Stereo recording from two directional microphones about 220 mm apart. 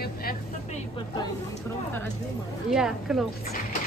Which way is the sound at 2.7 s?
Centre (ahead or behind).